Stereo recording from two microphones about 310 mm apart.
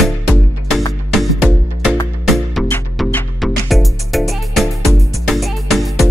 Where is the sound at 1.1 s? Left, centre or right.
Centre.